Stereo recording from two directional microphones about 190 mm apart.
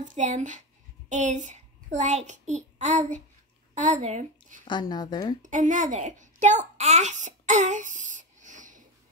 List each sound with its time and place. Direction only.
0.0 s a child's voice: 40° right (ahead or behind)
4.6 s speech: 20° left (ahead or behind)
5.4 s a child's voice: 40° right (ahead or behind)